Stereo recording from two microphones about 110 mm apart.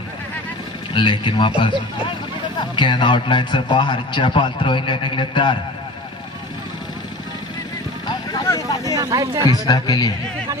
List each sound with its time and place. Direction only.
0.9 s a man's voice: 45° left (ahead or behind)
2.7 s a man's voice: 45° left (ahead or behind)
8.3 s vehicle: 30° left (ahead or behind)
8.9 s speech: 35° right (ahead or behind)
9.5 s speech: 35° left (ahead or behind)